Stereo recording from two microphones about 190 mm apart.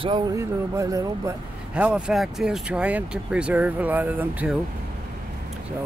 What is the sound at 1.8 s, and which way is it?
Speech, 5° right (ahead or behind).